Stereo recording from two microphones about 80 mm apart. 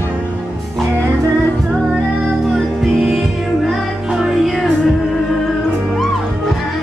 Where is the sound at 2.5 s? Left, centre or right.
Centre.